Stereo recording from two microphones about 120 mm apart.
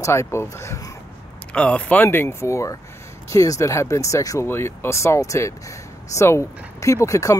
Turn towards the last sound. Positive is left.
turn(degrees=25)  # may be behind; listen again after turning